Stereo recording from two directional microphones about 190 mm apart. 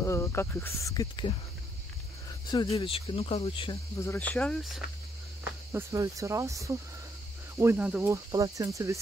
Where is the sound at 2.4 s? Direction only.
30° left (ahead or behind).